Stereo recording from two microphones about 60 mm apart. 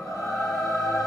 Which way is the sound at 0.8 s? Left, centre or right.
Left.